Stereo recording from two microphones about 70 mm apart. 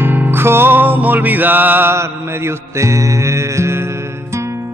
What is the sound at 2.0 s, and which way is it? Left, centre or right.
Mantra, right.